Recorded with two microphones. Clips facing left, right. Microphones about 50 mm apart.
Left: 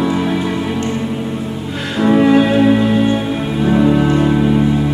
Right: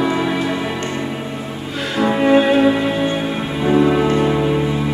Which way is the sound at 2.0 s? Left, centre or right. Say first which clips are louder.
Left 3 dB; centre.